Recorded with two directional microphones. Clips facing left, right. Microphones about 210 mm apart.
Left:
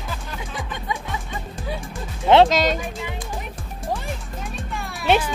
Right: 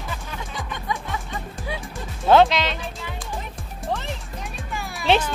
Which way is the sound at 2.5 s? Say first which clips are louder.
Left 5 dB; 45° left (ahead or behind).